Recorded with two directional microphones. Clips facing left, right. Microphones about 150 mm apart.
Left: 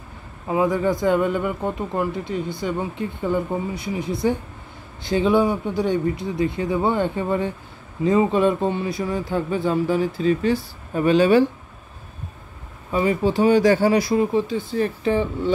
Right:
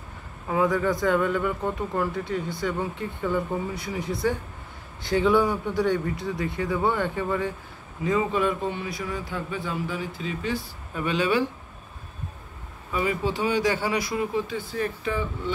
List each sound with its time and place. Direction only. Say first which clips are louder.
0.5 s a man's voice: left 3 dB; 20° left (ahead or behind); by 11.4 s 40° left (ahead or behind)
12.9 s a man's voice: left 6 dB; 35° left (ahead or behind)